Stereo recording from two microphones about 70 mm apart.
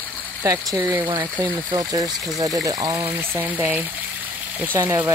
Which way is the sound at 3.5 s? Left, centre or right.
Right.